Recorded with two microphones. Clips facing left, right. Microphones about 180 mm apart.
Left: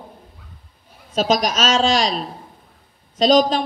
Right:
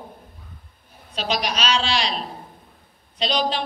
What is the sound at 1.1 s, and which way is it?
A woman's voice, 45° left (ahead or behind).